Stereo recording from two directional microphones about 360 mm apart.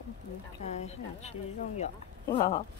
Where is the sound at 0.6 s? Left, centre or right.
Centre.